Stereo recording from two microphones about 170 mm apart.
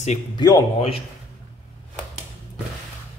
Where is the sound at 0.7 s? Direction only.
35° left (ahead or behind).